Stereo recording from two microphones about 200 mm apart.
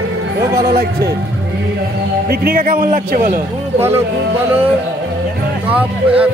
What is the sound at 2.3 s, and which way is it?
A man's voice, 50° right (ahead or behind).